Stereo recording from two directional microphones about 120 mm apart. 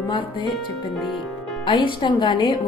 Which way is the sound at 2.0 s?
40° left (ahead or behind).